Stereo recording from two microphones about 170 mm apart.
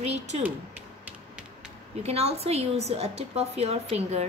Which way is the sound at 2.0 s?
40° right (ahead or behind).